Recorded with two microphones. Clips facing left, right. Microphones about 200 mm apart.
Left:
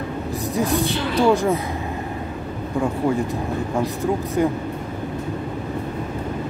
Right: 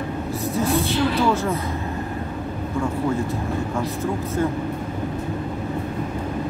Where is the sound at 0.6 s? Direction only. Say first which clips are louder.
Right 1 dB; 15° left (ahead or behind).